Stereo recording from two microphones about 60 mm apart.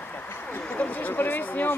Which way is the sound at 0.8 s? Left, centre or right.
Left.